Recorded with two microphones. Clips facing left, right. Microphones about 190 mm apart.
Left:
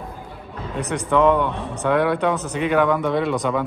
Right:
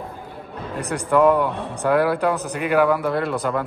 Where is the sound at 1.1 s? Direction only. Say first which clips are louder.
Right 1 dB; 5° right (ahead or behind).